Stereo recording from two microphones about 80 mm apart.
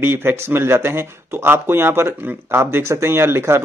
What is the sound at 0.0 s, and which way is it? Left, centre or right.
Speech, right.